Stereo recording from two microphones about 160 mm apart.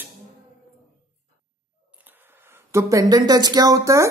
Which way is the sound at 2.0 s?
15° right (ahead or behind).